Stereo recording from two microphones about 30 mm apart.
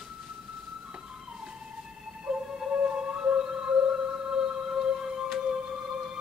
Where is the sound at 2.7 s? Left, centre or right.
Right.